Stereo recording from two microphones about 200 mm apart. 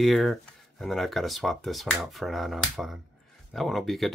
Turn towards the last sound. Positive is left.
turn(degrees=0)  # may be behind; listen again after turning